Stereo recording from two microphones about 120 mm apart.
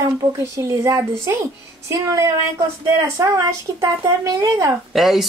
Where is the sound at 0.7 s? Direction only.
25° right (ahead or behind).